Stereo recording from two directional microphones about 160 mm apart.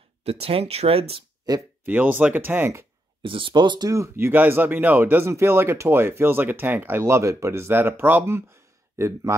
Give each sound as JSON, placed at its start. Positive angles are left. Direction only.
{"t": 0.2, "sound": "speech", "side_deg": -40}
{"t": 1.9, "sound": "speech", "side_deg": -10}
{"t": 3.2, "sound": "speech", "side_deg": -30}